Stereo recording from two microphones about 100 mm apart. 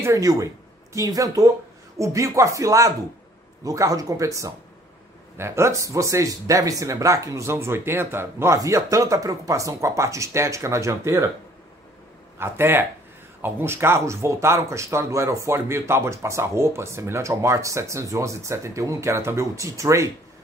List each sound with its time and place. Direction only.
0.0 s speech: 35° right (ahead or behind)
12.4 s speech: 25° right (ahead or behind)